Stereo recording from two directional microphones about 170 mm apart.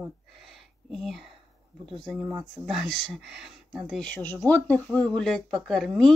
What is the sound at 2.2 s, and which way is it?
Speech, 15° right (ahead or behind).